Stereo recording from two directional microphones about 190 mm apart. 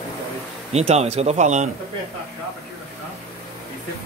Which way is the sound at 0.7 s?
35° right (ahead or behind).